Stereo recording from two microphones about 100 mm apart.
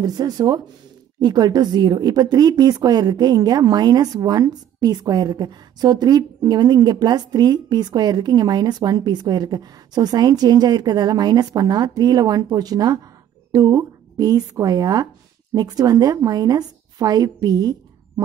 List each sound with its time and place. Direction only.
0.0 s a woman's voice: 40° right (ahead or behind)